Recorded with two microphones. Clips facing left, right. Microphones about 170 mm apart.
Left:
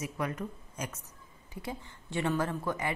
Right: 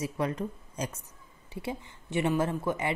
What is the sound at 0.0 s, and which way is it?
A woman's voice, 30° right (ahead or behind).